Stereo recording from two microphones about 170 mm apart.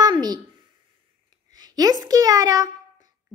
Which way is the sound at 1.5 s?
20° right (ahead or behind).